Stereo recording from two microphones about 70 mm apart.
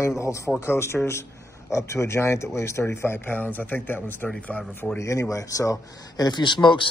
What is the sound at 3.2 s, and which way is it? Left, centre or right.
Speech, left.